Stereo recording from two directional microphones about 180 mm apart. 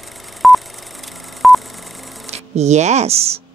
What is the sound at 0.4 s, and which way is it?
Telephone dialing, centre (ahead or behind).